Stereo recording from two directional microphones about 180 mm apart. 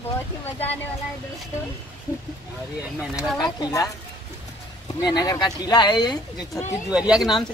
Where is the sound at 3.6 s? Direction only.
20° left (ahead or behind).